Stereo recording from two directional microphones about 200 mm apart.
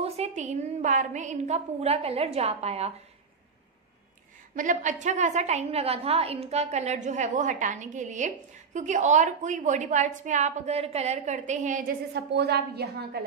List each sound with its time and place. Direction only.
0.0 s a woman's voice: 30° right (ahead or behind)
4.6 s a woman's voice: 40° right (ahead or behind)
12.1 s a woman's voice: 55° right (ahead or behind)